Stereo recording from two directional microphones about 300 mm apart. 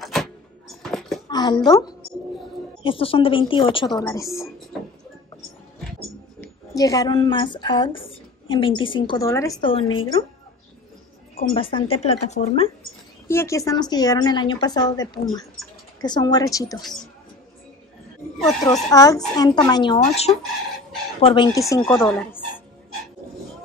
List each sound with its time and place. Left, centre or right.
0.0 s a sound: centre
1.3 s speech: centre
6.4 s speech: centre
11.5 s speech: centre
13.3 s speech: centre
18.6 s speech: centre